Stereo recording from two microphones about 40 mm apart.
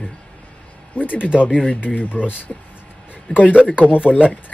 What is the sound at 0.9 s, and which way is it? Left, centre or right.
Speech, left.